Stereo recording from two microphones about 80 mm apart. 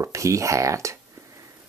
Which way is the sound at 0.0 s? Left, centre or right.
Right.